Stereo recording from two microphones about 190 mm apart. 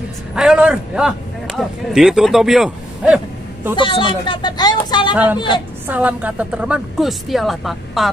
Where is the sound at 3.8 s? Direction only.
25° left (ahead or behind).